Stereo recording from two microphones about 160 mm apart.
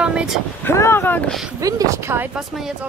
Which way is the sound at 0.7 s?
15° left (ahead or behind).